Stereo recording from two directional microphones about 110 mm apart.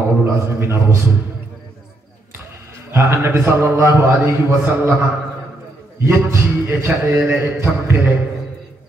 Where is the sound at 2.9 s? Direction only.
25° right (ahead or behind).